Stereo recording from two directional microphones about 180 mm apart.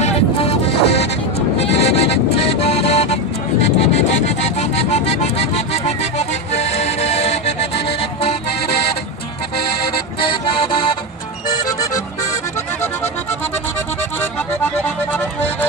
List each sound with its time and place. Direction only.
0.0 s music: 35° left (ahead or behind)
1.6 s vehicle: 35° left (ahead or behind)
3.6 s music: 35° left (ahead or behind)
10.2 s music: 30° left (ahead or behind)
14.6 s music: 10° left (ahead or behind)